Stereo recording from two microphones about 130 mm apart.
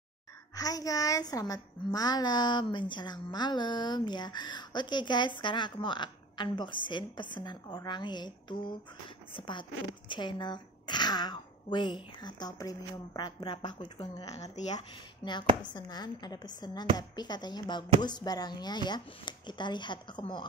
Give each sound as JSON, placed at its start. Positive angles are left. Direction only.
{"t": 0.6, "sound": "a woman's voice", "side_deg": 30}